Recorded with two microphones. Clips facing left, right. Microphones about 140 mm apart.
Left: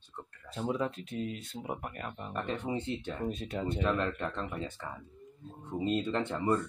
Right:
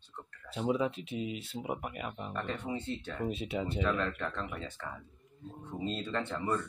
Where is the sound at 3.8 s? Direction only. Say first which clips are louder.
Left 2 dB; 15° left (ahead or behind).